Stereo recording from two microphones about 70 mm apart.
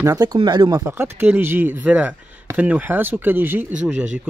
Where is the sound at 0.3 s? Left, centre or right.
Right.